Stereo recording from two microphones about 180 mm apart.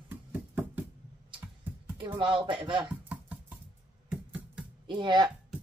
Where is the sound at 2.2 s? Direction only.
25° right (ahead or behind).